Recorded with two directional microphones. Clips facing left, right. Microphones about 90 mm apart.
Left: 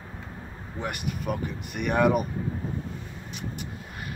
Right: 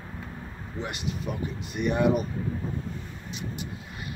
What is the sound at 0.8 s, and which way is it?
Speech, 55° left (ahead or behind).